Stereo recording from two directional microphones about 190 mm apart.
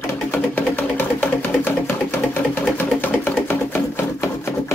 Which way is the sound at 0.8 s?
10° left (ahead or behind).